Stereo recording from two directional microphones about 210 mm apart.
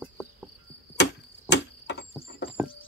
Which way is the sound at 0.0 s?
5° right (ahead or behind).